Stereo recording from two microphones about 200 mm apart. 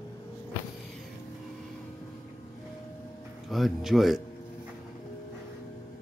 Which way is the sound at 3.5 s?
Centre (ahead or behind).